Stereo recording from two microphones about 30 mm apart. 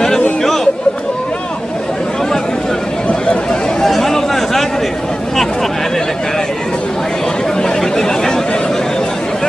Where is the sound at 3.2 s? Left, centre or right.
Left.